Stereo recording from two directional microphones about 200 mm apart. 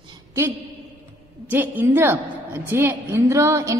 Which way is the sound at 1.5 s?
10° right (ahead or behind).